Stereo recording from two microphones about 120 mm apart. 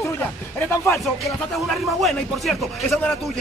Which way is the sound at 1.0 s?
Centre (ahead or behind).